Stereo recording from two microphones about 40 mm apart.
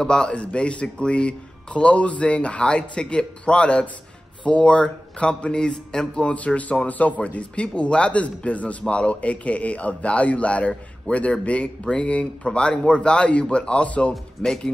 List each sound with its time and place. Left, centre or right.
0.0 s speech: centre
6.3 s speech: left